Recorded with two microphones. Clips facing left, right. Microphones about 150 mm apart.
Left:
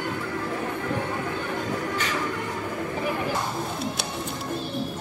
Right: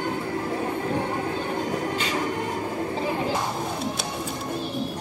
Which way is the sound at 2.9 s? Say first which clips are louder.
Right 1 dB; 25° right (ahead or behind).